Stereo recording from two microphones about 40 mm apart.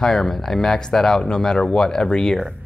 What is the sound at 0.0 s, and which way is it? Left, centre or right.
Speech, centre.